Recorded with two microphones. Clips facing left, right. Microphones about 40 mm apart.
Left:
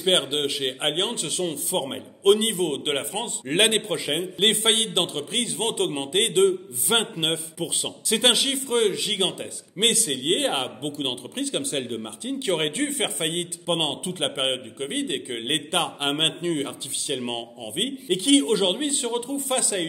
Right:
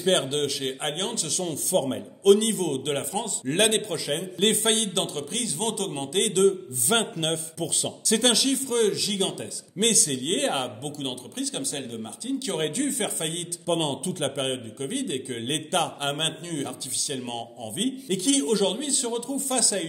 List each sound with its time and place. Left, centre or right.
0.0 s a man's voice: left